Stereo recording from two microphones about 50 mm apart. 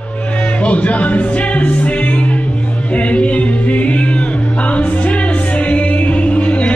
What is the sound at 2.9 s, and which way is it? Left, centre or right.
Music, left.